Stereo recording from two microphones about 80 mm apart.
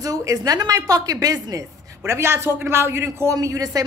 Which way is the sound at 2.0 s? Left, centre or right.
Right.